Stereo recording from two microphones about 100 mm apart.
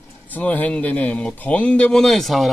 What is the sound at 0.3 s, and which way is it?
Speech, 15° left (ahead or behind).